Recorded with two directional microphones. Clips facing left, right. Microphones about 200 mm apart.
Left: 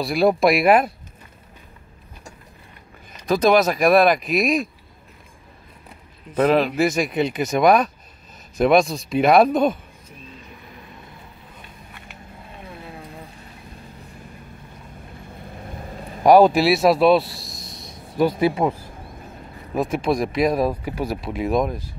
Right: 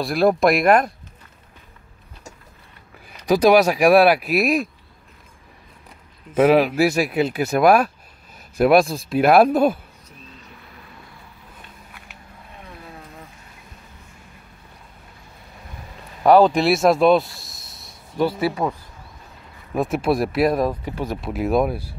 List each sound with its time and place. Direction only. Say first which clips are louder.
0.0 s speech: even; centre (ahead or behind)
3.3 s speech: right 2 dB; 10° right (ahead or behind)
6.3 s speech: right 3 dB; 10° right (ahead or behind)
16.2 s speech: left 1 dB; 10° left (ahead or behind); by 17.7 s 5° right (ahead or behind)
18.1 s speech: left 2 dB; 20° left (ahead or behind)
19.7 s speech: right 1 dB; centre (ahead or behind)
20.6 s speech: left 1 dB; 10° left (ahead or behind)
21.2 s speech: right 3 dB; centre (ahead or behind)